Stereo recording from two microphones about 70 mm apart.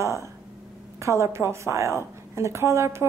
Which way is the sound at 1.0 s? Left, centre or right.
Right.